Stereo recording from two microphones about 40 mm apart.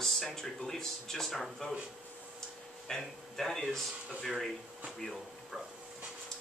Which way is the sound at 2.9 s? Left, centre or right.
Centre.